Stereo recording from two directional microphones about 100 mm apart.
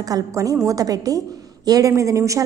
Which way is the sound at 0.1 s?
35° right (ahead or behind).